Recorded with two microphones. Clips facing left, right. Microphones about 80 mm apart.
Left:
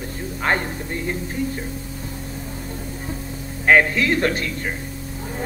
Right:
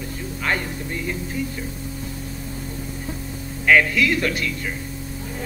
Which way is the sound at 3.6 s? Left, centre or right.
Left.